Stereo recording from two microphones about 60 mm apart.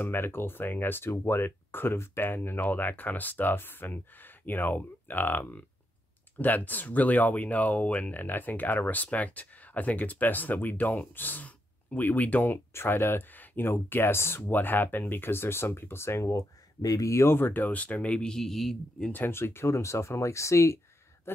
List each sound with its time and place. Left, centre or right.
0.0 s speech: left
12.7 s speech: left
18.3 s a man's voice: centre
19.1 s speech: left
19.7 s speech: left